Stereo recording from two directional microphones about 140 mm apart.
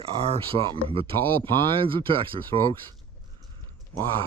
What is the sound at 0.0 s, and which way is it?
Speech, 45° right (ahead or behind).